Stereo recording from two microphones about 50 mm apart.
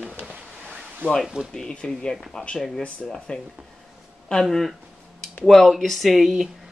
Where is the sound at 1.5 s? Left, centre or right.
Centre.